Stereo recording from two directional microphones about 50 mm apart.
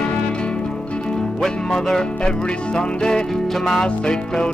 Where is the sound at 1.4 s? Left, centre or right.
Centre.